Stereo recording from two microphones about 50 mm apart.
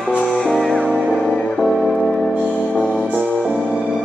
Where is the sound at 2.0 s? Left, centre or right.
Centre.